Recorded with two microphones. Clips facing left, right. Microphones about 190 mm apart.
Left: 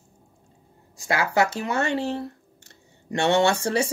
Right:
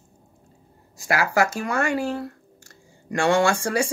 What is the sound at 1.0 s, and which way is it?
Speech, 25° left (ahead or behind).